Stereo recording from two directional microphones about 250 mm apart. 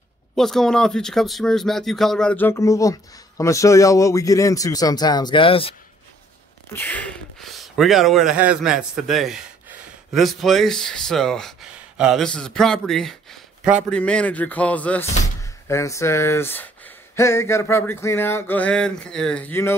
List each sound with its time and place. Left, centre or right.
0.4 s speech: centre; by 5.8 s left
6.7 s speech: centre